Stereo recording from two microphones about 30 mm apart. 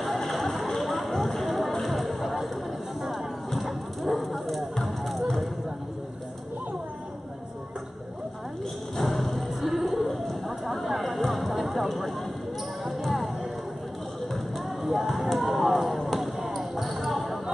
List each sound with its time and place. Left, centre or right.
0.0 s a sound: centre
4.8 s music: centre
8.9 s clip-clop: centre
11.2 s music: centre
13.0 s a sound: centre
14.8 s basketball bounce: centre